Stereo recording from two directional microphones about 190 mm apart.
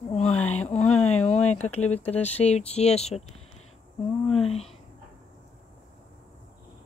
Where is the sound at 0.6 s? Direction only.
35° left (ahead or behind).